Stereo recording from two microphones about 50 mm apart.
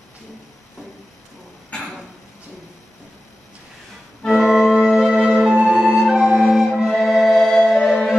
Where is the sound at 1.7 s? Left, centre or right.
Centre.